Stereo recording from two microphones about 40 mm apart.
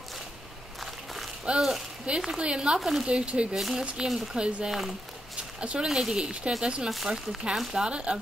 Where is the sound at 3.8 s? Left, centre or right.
Centre.